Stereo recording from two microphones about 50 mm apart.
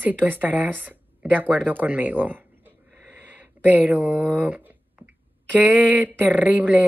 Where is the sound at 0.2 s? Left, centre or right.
Right.